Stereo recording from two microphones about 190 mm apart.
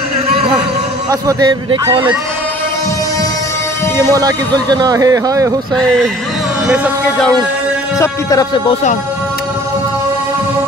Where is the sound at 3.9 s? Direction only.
20° right (ahead or behind).